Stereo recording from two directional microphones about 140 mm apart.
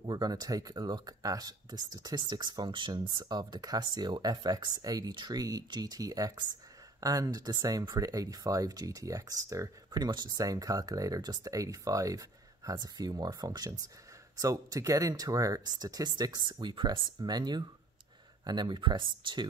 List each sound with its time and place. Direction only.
0.0 s speech: 30° right (ahead or behind)